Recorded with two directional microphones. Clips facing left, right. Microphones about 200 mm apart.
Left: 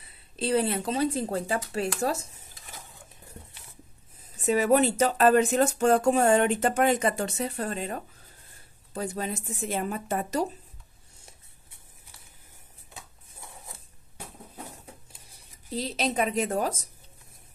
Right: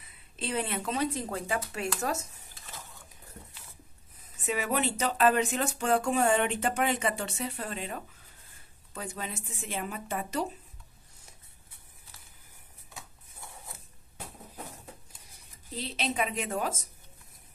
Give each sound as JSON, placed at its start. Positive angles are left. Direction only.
{"t": 0.0, "sound": "speech", "side_deg": 35}
{"t": 4.2, "sound": "speech", "side_deg": 40}
{"t": 15.7, "sound": "speech", "side_deg": 40}